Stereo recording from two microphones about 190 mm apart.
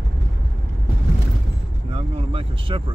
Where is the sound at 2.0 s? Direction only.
25° right (ahead or behind).